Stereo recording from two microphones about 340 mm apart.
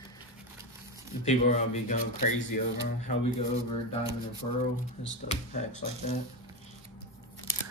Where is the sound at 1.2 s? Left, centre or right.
Centre.